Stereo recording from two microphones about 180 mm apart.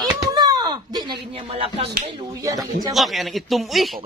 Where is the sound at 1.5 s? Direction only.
35° right (ahead or behind).